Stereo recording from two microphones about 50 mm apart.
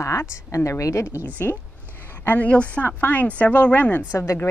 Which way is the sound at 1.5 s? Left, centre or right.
Left.